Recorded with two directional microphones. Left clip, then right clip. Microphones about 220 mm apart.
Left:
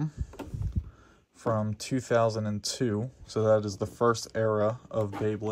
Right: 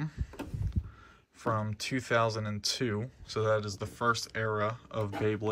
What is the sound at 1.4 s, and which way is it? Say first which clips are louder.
Speech: left 2 dB; 20° left (ahead or behind).